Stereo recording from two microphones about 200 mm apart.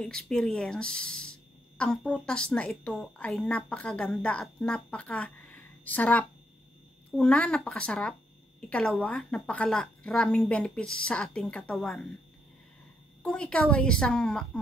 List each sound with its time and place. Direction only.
0.0 s speech: 5° left (ahead or behind)
13.2 s speech: 5° left (ahead or behind)